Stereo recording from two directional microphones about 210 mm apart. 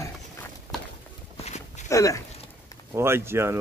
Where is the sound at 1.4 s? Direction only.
30° left (ahead or behind).